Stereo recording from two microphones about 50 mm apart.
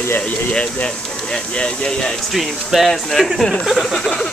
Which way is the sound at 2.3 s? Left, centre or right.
Centre.